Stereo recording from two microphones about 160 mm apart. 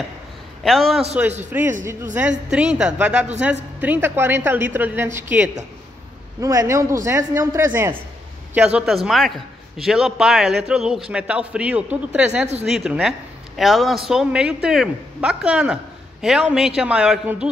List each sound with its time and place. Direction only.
0.7 s a man's voice: centre (ahead or behind)
1.5 s a man's voice: 10° right (ahead or behind)